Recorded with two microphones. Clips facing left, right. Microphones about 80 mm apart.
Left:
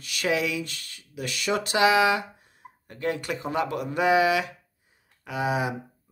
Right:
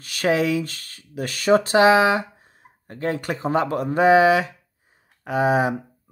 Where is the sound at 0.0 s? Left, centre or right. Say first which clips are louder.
Right 6 dB; right.